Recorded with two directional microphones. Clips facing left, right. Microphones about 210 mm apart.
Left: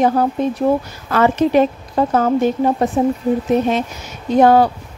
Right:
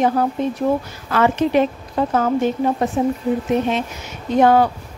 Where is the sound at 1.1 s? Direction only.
40° left (ahead or behind).